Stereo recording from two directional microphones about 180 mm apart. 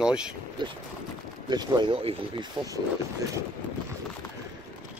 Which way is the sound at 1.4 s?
25° right (ahead or behind).